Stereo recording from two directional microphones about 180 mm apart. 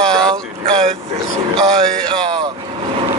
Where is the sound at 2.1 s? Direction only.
25° right (ahead or behind).